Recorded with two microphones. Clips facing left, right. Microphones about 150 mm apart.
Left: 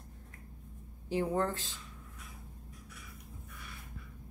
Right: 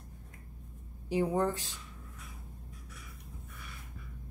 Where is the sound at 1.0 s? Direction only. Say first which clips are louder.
Right 2 dB; 15° right (ahead or behind).